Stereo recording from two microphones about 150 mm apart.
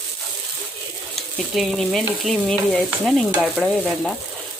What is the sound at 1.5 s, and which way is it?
Frying, centre (ahead or behind).